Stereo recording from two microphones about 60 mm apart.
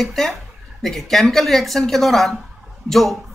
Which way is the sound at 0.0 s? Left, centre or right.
Centre.